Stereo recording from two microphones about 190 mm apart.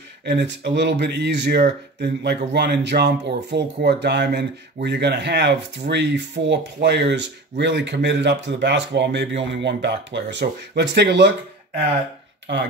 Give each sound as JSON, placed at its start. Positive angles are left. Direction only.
{"t": 0.2, "sound": "speech", "side_deg": -60}